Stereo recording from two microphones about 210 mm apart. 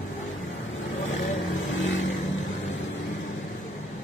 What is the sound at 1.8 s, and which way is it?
Vehicle, 65° left (ahead or behind).